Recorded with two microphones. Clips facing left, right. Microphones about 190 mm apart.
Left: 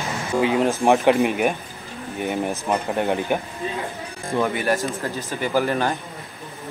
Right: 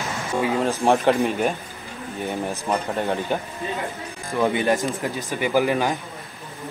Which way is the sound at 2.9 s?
15° left (ahead or behind).